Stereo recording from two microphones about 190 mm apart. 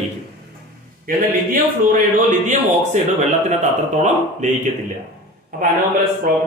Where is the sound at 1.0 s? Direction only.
45° right (ahead or behind).